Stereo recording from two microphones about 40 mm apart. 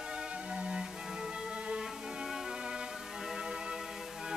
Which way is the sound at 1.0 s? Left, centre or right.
Centre.